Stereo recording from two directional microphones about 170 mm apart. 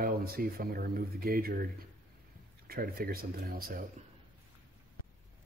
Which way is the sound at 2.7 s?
60° right (ahead or behind).